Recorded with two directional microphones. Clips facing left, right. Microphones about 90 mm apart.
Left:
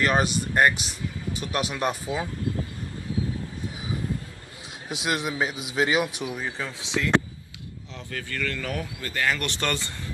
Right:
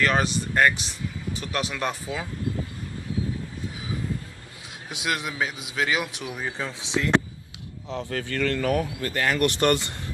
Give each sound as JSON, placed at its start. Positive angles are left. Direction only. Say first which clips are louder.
{"t": 0.0, "sound": "speech", "louder": "even", "side_deg": 15}
{"t": 4.9, "sound": "a man's voice", "louder": "left 1 dB", "side_deg": 25}
{"t": 6.3, "sound": "speech", "louder": "right 1 dB", "side_deg": -5}
{"t": 6.8, "sound": "speech", "louder": "right 1 dB", "side_deg": -30}
{"t": 8.0, "sound": "speech", "louder": "right 4 dB", "side_deg": -55}
{"t": 8.5, "sound": "speech", "louder": "right 7 dB", "side_deg": -45}